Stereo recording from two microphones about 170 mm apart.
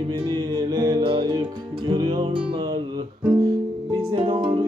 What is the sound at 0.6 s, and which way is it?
Music, 25° right (ahead or behind).